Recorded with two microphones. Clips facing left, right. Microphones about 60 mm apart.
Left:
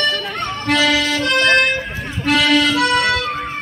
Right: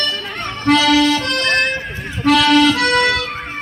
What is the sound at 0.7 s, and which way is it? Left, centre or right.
Accordion, right.